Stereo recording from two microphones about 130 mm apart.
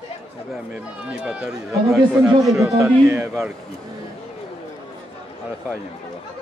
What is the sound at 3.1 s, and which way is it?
Speech, 20° right (ahead or behind).